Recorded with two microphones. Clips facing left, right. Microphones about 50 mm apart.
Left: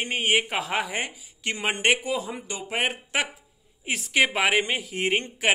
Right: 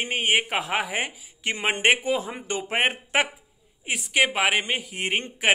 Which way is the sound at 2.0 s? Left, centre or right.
Right.